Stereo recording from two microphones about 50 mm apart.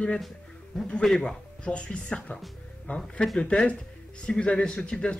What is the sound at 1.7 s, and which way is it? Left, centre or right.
Speech, left.